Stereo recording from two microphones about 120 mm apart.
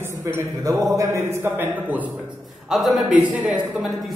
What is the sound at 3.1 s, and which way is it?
Speech, 10° right (ahead or behind).